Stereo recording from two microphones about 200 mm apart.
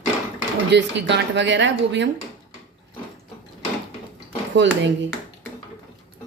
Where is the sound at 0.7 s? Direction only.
60° right (ahead or behind).